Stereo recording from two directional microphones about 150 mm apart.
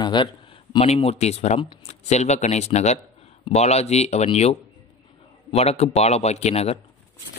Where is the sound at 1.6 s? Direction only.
35° left (ahead or behind).